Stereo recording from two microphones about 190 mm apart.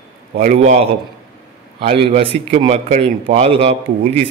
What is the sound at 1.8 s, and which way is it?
A man's voice, 35° right (ahead or behind).